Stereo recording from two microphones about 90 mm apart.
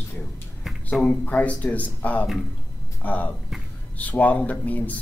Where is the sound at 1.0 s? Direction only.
15° left (ahead or behind).